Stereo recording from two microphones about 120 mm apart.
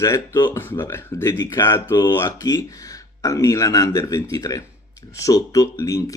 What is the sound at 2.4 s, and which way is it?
Speech, 30° left (ahead or behind).